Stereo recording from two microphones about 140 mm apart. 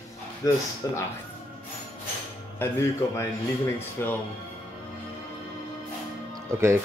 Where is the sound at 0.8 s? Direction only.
20° left (ahead or behind).